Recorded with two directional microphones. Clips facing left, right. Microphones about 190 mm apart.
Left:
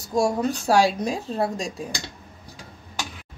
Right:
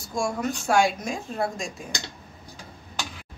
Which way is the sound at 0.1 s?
35° left (ahead or behind).